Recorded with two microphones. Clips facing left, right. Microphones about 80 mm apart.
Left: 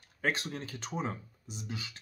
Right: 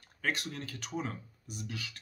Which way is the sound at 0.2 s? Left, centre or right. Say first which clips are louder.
Left 2 dB; left.